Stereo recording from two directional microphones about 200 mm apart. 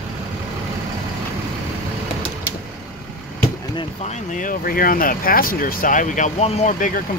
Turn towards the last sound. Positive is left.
turn(degrees=40)  # may be behind; listen again after turning